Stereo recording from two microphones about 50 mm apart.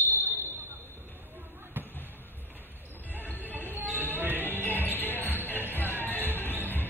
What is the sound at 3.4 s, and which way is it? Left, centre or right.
Music, right.